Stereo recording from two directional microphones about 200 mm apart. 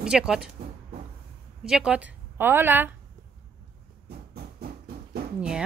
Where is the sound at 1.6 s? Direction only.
Centre (ahead or behind).